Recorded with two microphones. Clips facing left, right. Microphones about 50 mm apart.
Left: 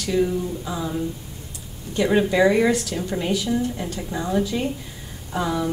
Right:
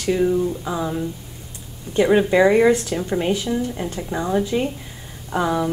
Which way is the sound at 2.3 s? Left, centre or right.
Right.